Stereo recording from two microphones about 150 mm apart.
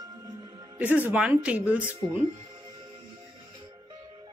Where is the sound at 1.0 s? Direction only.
10° right (ahead or behind).